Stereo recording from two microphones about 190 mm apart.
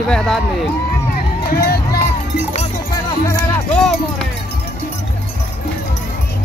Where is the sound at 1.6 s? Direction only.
55° left (ahead or behind).